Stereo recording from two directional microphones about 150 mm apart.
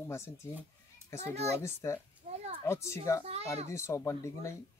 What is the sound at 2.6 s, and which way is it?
Speech, 20° left (ahead or behind).